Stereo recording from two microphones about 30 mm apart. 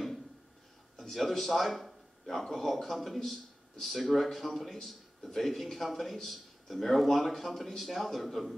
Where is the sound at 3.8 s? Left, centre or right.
Centre.